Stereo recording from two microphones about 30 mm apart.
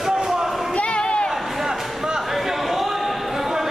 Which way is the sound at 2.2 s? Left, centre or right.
Centre.